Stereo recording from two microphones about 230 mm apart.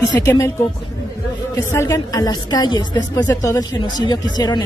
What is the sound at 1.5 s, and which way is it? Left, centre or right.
A woman's voice, centre.